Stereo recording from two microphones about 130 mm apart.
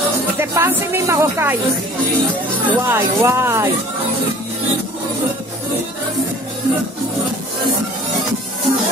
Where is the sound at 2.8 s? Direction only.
20° right (ahead or behind).